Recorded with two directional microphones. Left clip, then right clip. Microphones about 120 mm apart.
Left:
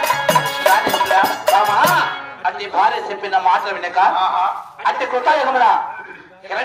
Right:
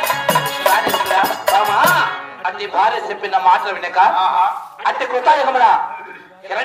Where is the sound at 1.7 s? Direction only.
35° right (ahead or behind).